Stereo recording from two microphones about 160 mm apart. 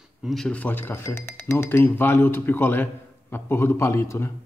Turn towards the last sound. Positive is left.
turn(degrees=15)  # may be behind; listen again after turning